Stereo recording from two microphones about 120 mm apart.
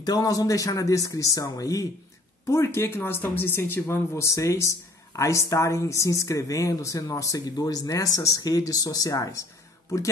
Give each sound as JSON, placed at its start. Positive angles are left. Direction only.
{"t": 0.0, "sound": "speech", "side_deg": 30}